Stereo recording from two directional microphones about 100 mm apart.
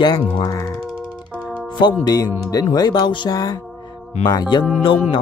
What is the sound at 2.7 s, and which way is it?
Music, 45° left (ahead or behind).